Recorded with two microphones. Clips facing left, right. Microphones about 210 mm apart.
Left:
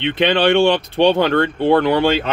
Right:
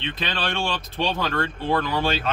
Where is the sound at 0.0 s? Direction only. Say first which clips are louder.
Left 13 dB; 75° left (ahead or behind).